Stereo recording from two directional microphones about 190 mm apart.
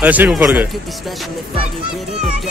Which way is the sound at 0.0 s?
10° right (ahead or behind).